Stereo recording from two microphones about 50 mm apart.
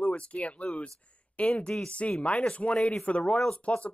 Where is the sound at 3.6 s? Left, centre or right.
Left.